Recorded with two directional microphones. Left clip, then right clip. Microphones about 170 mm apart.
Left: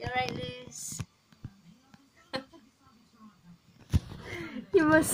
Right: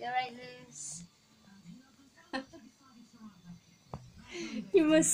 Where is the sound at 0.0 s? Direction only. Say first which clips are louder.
Left 2 dB; 40° left (ahead or behind).